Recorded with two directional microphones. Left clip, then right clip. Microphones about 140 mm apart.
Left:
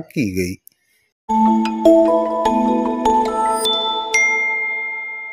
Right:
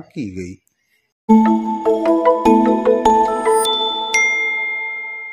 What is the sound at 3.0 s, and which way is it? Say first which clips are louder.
Music: left 1 dB; centre (ahead or behind).